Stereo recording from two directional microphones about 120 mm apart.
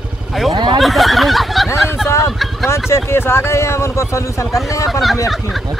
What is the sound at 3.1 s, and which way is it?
Speech, 20° left (ahead or behind).